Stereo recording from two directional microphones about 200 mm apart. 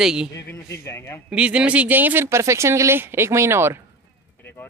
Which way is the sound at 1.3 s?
5° right (ahead or behind).